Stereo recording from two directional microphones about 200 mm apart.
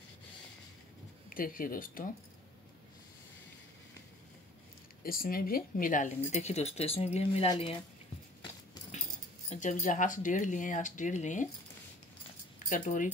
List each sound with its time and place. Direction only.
1.3 s speech: 45° left (ahead or behind)
5.0 s speech: 45° left (ahead or behind); by 7.8 s 25° left (ahead or behind)
9.5 s speech: 40° left (ahead or behind)
12.6 s speech: 40° left (ahead or behind)